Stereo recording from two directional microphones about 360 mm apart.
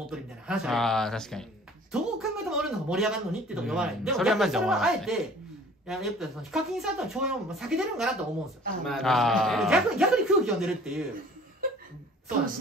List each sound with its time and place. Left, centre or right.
0.1 s speech: centre